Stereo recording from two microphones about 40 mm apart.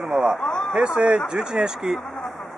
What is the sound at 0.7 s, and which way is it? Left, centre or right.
Speech, right.